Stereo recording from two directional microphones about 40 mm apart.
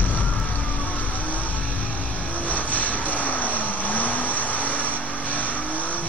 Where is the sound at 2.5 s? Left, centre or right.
Left.